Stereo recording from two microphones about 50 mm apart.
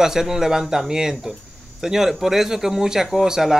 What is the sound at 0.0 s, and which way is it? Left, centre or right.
Speech, centre.